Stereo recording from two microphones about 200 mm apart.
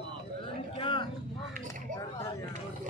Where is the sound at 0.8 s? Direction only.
25° left (ahead or behind).